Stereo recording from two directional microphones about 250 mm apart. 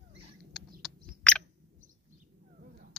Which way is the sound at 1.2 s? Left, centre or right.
Centre.